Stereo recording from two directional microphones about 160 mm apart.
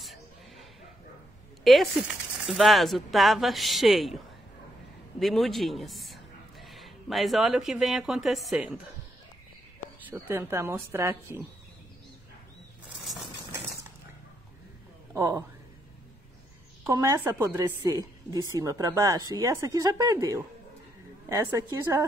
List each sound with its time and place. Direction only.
0.0 s a sound: centre (ahead or behind)
1.6 s speech: centre (ahead or behind)
5.2 s a man's voice: centre (ahead or behind)
10.0 s speech: 15° right (ahead or behind)
15.1 s a woman's voice: 20° right (ahead or behind)
16.8 s a woman's voice: 20° right (ahead or behind)